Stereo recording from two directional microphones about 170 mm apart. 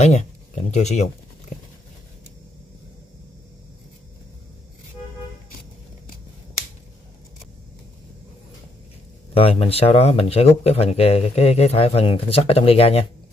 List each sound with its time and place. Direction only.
0.0 s speech: 40° left (ahead or behind)
1.5 s a sound: 50° left (ahead or behind)
9.3 s speech: 35° left (ahead or behind)